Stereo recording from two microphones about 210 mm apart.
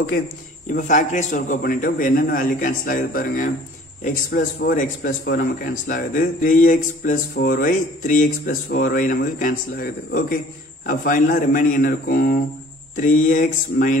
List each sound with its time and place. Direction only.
0.7 s a man's voice: 35° left (ahead or behind)